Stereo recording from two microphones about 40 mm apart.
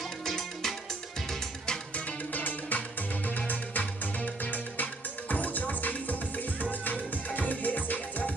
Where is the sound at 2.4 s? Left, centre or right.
Left.